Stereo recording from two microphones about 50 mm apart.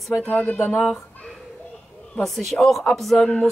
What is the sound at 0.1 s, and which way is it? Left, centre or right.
Speech, centre.